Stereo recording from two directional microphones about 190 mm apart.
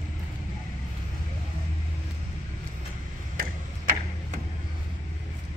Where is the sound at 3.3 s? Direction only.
45° right (ahead or behind).